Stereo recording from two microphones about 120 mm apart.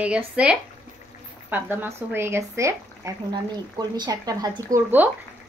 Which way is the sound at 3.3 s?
35° right (ahead or behind).